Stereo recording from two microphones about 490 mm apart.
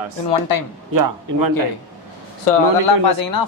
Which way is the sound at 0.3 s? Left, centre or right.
Left.